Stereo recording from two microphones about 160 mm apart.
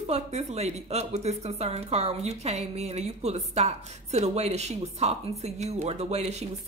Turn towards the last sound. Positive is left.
turn(degrees=-40)  # may be behind; listen again after turning